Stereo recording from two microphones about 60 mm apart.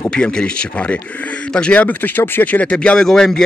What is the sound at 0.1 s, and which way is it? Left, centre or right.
Speech, centre.